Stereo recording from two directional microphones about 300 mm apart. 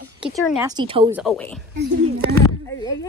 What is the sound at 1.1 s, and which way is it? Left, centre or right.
Speech, centre.